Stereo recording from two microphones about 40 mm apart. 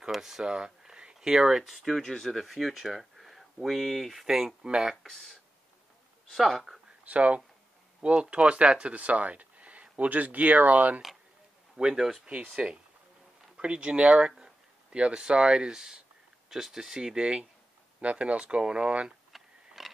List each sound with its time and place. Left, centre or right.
0.1 s speech: centre
0.5 s a sound: right
1.3 s speech: centre
5.0 s speech: centre
6.3 s speech: centre
7.1 s speech: right
11.9 s speech: centre
12.3 s speech: right
14.4 s a sound: right
15.1 s speech: right
18.0 s speech: right
19.3 s a sound: centre